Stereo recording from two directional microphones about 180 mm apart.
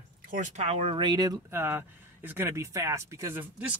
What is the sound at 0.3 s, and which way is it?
Speech, 40° right (ahead or behind).